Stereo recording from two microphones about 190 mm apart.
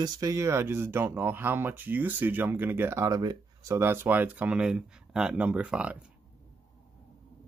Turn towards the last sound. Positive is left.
turn(degrees=-5)  # may be behind; listen again after turning